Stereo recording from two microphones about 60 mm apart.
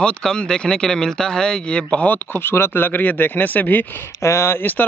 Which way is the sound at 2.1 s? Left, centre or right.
Left.